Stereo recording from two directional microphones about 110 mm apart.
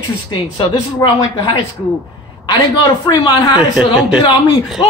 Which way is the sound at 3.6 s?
5° right (ahead or behind).